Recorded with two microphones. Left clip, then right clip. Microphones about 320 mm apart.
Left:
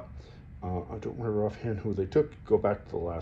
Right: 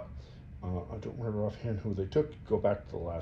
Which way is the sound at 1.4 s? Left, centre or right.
Centre.